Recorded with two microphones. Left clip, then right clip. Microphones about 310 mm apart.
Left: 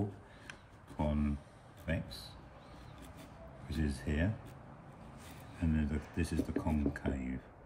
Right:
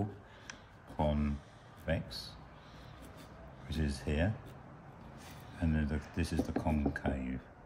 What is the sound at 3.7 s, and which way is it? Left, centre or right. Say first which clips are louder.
Speech: right 1 dB; centre.